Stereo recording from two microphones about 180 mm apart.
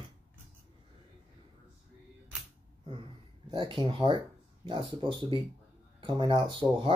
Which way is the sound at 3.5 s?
25° right (ahead or behind).